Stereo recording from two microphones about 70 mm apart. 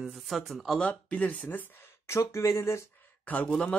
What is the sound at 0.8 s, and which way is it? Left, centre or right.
Speech, centre.